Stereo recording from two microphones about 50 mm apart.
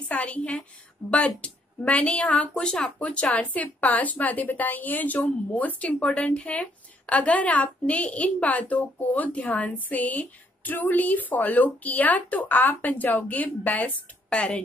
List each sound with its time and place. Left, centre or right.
0.1 s a woman's voice: left
14.3 s speech: left